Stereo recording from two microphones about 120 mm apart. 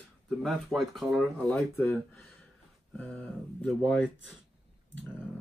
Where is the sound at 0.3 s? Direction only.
Centre (ahead or behind).